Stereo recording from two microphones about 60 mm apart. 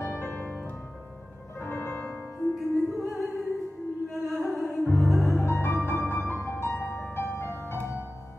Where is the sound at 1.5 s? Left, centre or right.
Left.